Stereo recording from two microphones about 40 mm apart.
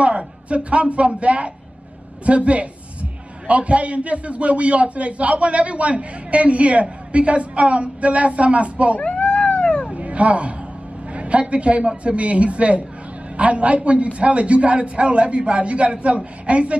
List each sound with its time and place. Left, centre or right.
0.0 s a man's voice: right
9.0 s cat: left
9.9 s a sound: right
11.1 s a woman's voice: right